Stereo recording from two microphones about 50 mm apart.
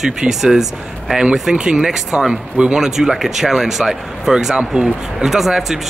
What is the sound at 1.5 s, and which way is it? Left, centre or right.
Speech, centre.